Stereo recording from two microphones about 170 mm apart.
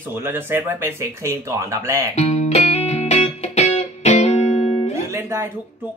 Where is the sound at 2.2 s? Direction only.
40° left (ahead or behind).